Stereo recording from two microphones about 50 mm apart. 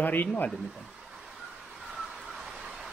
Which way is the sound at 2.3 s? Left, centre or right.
Centre.